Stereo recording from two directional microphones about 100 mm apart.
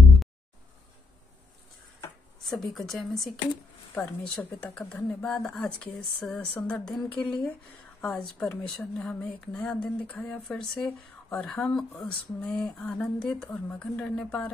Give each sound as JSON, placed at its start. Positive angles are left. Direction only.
{"t": 2.4, "sound": "speech", "side_deg": 0}